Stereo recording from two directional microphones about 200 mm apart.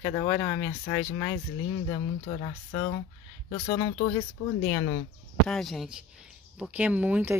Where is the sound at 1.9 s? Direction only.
25° left (ahead or behind).